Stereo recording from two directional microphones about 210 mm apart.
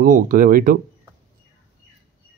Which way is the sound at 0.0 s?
40° right (ahead or behind).